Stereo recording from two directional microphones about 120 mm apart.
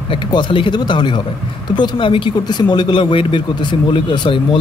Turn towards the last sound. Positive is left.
turn(degrees=45)  # may be behind; listen again after turning